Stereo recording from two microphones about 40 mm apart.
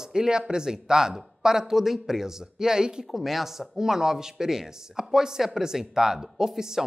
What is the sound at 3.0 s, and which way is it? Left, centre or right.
Speech, centre.